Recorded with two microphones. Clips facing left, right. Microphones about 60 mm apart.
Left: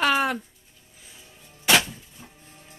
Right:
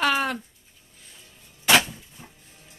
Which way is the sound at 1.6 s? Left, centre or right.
Centre.